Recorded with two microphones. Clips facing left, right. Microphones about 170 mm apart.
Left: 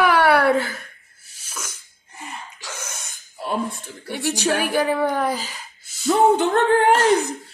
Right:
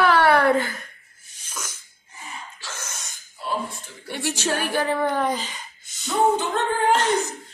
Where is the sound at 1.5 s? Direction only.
10° left (ahead or behind).